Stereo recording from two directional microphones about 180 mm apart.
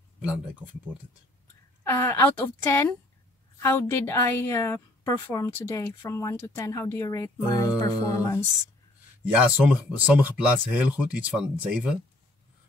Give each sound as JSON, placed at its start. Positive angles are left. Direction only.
{"t": 0.2, "sound": "speech", "side_deg": -5}
{"t": 1.9, "sound": "a woman's voice", "side_deg": 15}
{"t": 7.8, "sound": "music", "side_deg": 20}
{"t": 9.4, "sound": "speech", "side_deg": -10}